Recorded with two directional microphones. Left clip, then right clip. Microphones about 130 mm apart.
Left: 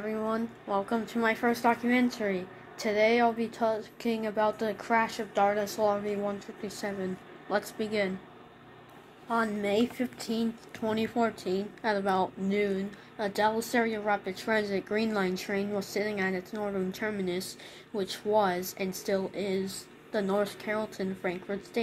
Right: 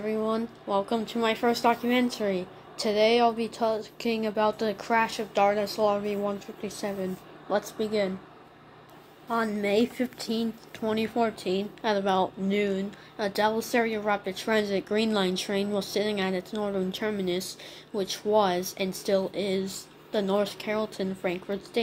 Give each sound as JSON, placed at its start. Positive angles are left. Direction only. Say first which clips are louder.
{"t": 0.0, "sound": "speech", "louder": "right 3 dB", "side_deg": -15}
{"t": 9.3, "sound": "speech", "louder": "right 2 dB", "side_deg": -15}
{"t": 10.8, "sound": "a woman's voice", "louder": "right 2 dB", "side_deg": -5}